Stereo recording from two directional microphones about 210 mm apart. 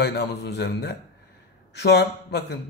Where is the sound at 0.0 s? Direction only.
55° left (ahead or behind).